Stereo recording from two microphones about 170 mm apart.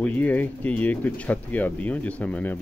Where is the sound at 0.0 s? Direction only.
10° left (ahead or behind).